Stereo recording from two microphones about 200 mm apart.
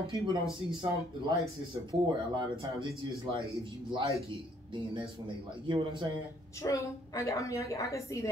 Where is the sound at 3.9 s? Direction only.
15° right (ahead or behind).